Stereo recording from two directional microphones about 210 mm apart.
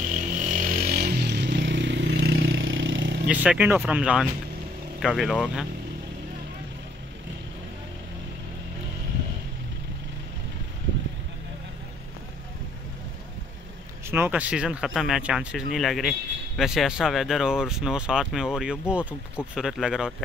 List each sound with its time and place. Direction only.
0.1 s vehicle: 40° right (ahead or behind); by 3.2 s 60° right (ahead or behind)
3.3 s speech: 5° right (ahead or behind)
14.1 s speech: 10° right (ahead or behind)